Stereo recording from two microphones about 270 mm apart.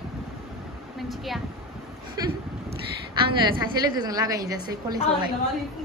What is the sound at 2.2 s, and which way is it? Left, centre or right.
A woman's voice, centre.